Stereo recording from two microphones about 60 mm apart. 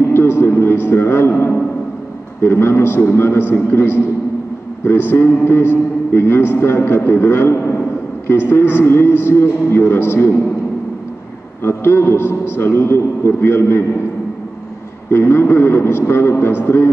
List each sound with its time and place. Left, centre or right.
0.1 s a man's voice: left
11.6 s a man's voice: left
15.0 s a man's voice: left